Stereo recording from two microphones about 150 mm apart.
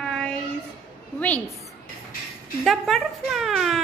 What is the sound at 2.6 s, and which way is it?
Speech, centre (ahead or behind).